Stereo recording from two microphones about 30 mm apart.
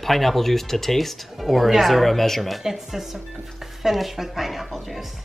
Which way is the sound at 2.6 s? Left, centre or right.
Centre.